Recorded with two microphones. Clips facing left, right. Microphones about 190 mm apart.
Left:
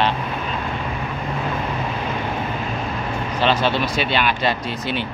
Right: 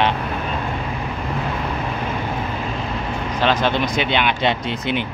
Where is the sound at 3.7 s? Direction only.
20° right (ahead or behind).